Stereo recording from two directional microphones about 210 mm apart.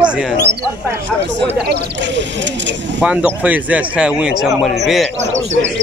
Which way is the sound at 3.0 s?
5° right (ahead or behind).